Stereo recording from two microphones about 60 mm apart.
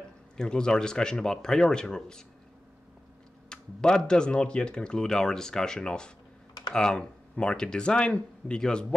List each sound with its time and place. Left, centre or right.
0.4 s speech: centre
3.4 s speech: centre